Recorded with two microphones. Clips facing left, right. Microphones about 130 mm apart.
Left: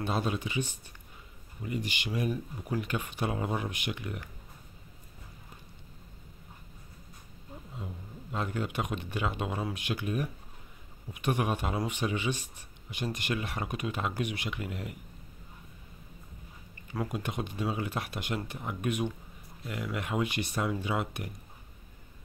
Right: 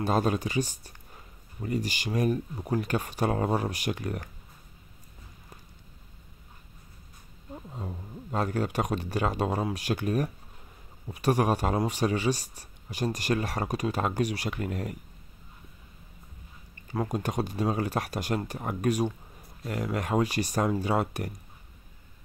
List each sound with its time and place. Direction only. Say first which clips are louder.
0.0 s speech: right 5 dB; 45° right (ahead or behind)
7.7 s a man's voice: right 3 dB; 40° right (ahead or behind)
16.9 s speech: right 5 dB; 40° right (ahead or behind)